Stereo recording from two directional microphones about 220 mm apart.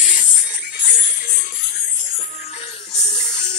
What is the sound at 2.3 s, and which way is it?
Music, 25° left (ahead or behind).